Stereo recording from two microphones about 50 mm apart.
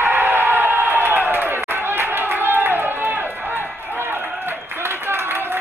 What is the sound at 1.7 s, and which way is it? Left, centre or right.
Run, right.